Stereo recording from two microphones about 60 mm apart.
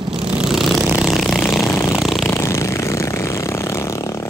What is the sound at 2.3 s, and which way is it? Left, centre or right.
Vehicle, left.